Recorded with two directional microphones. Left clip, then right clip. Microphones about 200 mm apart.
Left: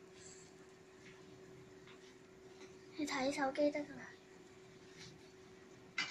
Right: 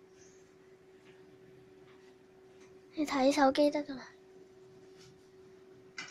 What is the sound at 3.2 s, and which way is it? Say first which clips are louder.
Speech: right 10 dB; 50° right (ahead or behind).